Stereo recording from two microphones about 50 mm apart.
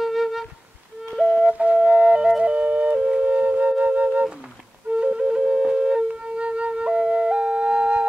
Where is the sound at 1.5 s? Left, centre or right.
Right.